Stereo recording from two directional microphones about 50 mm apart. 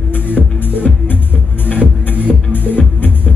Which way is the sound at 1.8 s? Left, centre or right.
Right.